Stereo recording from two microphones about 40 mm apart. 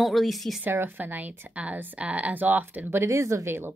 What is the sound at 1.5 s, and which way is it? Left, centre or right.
Speech, right.